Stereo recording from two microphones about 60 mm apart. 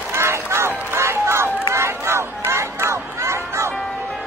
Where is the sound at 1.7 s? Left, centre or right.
Right.